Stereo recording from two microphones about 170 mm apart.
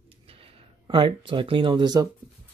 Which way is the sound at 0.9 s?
30° right (ahead or behind).